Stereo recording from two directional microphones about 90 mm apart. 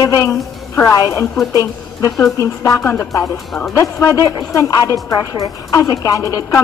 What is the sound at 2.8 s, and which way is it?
Music, 30° left (ahead or behind).